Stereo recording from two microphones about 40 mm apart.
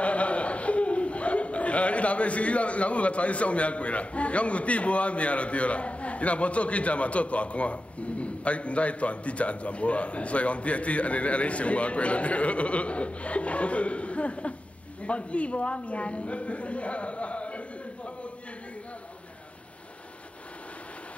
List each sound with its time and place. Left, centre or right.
0.0 s a man's voice: left